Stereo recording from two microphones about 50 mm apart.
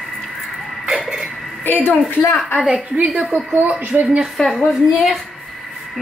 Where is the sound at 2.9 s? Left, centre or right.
Right.